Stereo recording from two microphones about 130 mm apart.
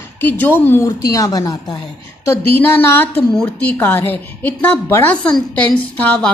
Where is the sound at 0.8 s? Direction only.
25° left (ahead or behind).